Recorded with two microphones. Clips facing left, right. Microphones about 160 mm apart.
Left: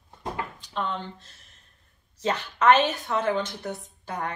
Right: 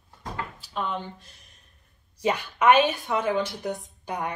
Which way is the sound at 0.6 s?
10° right (ahead or behind).